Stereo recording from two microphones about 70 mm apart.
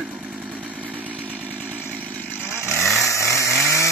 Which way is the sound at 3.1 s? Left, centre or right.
Left.